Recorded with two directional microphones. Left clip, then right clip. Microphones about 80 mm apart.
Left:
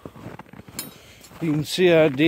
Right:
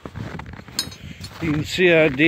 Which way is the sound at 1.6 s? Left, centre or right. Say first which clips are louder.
Right 1 dB; left.